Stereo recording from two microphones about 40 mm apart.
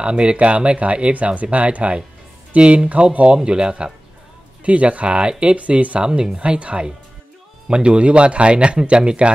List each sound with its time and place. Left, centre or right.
0.0 s a man's voice: right
6.0 s a man's voice: centre